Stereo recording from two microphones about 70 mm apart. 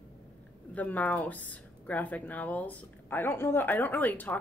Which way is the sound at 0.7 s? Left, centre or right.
Left.